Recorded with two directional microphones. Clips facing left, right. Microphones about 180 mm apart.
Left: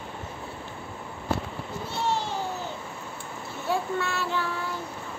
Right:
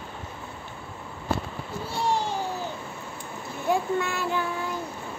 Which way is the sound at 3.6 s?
15° right (ahead or behind).